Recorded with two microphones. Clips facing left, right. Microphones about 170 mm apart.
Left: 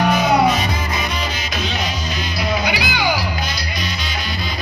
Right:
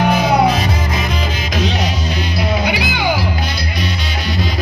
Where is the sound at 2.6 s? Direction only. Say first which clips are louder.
Right 2 dB; 50° right (ahead or behind).